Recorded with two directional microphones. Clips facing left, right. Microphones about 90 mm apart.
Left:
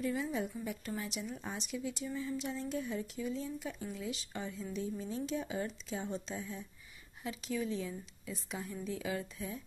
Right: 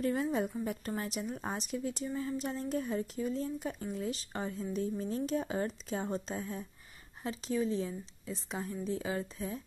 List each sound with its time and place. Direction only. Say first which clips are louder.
0.0 s a woman's voice: right 4 dB; 50° right (ahead or behind)